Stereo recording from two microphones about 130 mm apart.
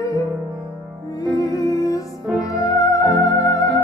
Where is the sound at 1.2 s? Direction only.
25° left (ahead or behind).